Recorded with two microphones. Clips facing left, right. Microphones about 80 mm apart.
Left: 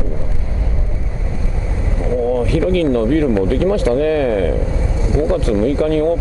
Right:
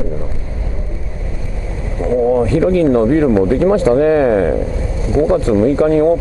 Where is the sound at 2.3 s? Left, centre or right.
Right.